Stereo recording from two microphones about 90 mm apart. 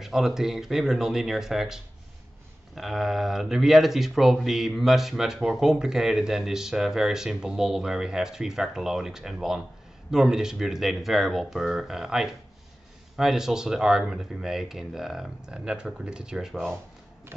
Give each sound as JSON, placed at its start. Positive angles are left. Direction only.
{"t": 0.0, "sound": "speech", "side_deg": -5}
{"t": 17.3, "sound": "shuffling cards", "side_deg": -30}